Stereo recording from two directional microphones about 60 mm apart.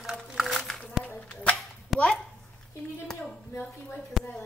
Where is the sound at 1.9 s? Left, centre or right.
Centre.